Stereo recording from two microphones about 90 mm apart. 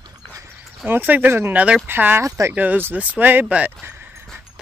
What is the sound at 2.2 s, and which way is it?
Speech, 35° right (ahead or behind).